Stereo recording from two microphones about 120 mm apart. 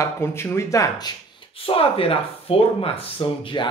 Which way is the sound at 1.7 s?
50° left (ahead or behind).